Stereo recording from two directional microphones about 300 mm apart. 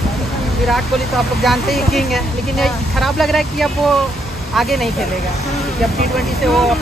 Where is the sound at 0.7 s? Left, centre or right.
Centre.